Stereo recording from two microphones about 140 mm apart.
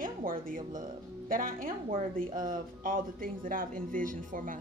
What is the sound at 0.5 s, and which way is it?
Speech, 75° right (ahead or behind).